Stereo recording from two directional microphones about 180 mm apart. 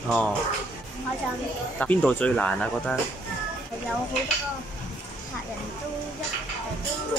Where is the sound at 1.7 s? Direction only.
10° left (ahead or behind).